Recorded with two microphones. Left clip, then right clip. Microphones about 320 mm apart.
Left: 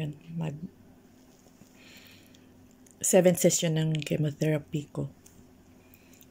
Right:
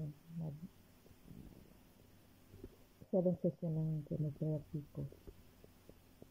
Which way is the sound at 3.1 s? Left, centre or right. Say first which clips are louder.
Left 15 dB; left.